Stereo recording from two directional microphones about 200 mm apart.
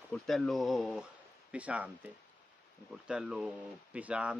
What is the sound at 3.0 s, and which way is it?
Speech, 5° right (ahead or behind).